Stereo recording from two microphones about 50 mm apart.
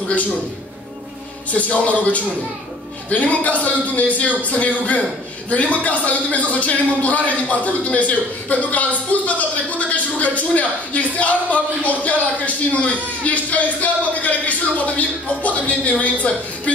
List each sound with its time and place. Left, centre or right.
1.5 s a man's voice: left